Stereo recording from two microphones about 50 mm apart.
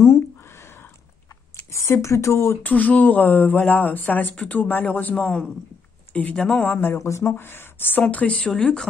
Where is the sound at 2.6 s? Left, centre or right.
Left.